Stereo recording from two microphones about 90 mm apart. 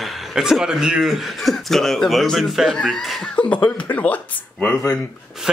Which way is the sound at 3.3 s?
15° left (ahead or behind).